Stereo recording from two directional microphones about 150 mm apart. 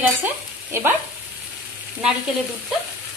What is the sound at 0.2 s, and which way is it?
Speech, 15° right (ahead or behind).